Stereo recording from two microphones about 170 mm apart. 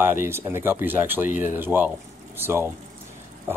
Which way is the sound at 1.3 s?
45° left (ahead or behind).